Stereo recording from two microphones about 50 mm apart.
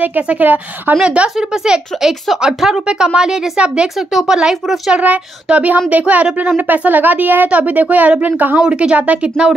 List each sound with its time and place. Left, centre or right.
0.0 s speech: right
1.0 s speech: right
1.3 s speech: centre
4.1 s speech: centre
5.0 s speech: right
8.6 s speech: right